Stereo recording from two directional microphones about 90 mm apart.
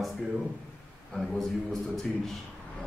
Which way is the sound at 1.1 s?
5° left (ahead or behind).